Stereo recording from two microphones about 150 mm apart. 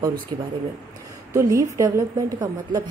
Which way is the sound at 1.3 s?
20° right (ahead or behind).